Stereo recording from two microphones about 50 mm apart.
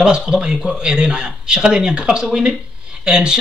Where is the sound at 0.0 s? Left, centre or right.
Centre.